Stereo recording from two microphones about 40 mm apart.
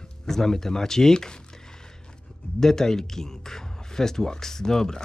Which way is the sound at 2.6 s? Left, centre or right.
Centre.